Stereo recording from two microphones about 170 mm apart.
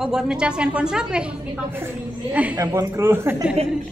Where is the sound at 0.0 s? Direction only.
5° right (ahead or behind).